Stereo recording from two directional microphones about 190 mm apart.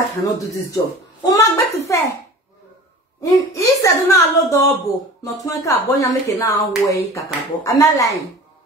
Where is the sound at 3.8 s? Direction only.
15° left (ahead or behind).